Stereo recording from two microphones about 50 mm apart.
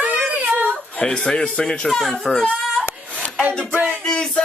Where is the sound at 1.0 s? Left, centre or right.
Centre.